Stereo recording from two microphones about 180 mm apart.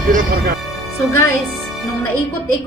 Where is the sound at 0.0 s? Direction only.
50° right (ahead or behind).